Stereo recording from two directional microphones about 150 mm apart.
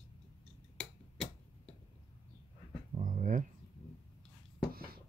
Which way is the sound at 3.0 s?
60° right (ahead or behind).